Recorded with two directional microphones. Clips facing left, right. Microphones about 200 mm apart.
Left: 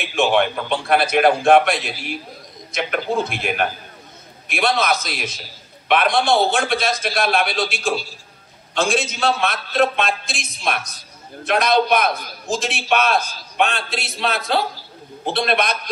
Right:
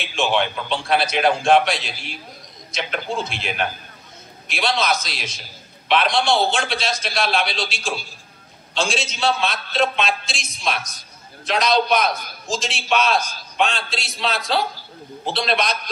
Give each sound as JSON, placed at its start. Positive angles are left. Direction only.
{"t": 0.0, "sound": "a man's voice", "side_deg": 55}